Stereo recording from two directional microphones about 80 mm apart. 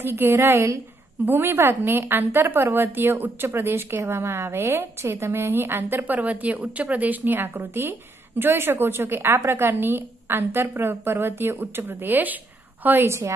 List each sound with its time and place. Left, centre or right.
0.0 s a woman's voice: right